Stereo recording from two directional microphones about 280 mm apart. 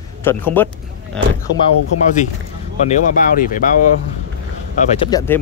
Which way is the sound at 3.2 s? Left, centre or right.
Left.